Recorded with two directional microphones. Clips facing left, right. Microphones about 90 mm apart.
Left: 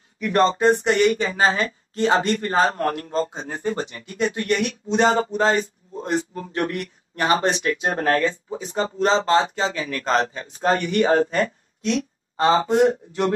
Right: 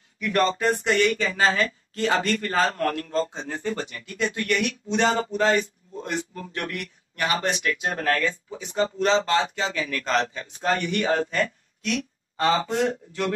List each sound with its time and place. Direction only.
0.2 s speech: 30° left (ahead or behind)